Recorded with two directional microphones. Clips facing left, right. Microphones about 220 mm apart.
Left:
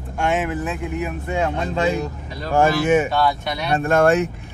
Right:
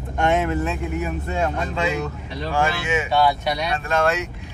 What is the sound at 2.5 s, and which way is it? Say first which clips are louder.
Speech: left 7 dB; 50° left (ahead or behind).